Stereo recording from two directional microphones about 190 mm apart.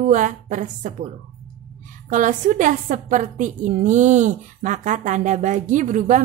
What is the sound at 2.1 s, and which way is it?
A woman's voice, 45° right (ahead or behind).